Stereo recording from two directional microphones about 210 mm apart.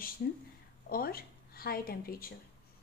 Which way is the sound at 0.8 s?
45° left (ahead or behind).